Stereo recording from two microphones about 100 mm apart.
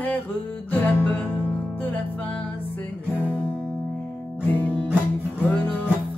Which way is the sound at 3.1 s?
20° right (ahead or behind).